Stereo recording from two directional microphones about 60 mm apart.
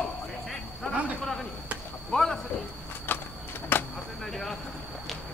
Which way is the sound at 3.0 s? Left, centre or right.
Left.